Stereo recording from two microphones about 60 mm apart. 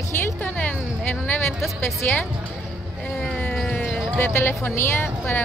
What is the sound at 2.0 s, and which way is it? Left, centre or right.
Speech, left.